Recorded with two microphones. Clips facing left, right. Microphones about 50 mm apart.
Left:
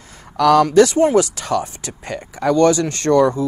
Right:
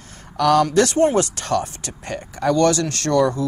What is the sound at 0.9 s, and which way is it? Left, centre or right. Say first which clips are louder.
Speech: left 3 dB; centre.